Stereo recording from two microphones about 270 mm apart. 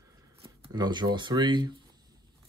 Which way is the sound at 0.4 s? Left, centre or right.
Centre.